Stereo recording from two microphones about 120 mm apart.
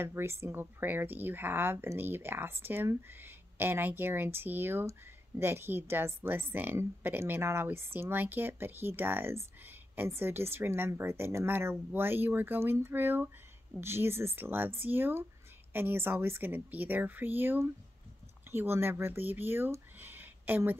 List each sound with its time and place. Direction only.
0.0 s a woman's voice: 20° right (ahead or behind)